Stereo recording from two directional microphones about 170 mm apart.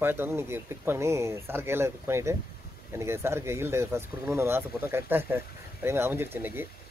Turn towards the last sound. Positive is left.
turn(degrees=-10)  # may be behind; listen again after turning